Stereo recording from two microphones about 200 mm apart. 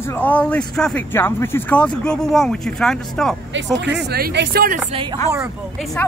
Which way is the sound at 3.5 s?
60° right (ahead or behind).